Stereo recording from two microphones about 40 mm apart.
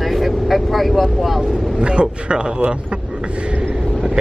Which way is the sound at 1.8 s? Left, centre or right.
Right.